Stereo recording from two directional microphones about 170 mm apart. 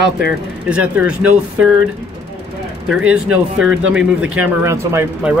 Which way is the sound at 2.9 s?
5° right (ahead or behind).